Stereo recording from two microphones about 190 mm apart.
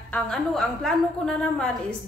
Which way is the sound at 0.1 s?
Centre (ahead or behind).